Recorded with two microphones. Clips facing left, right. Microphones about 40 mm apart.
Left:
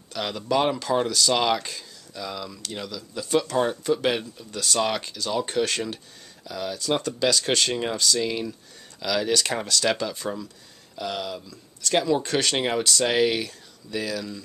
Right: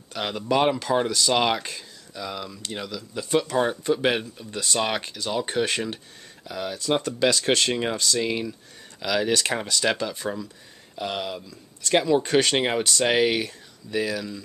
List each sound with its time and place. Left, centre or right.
0.1 s speech: centre
11.0 s speech: right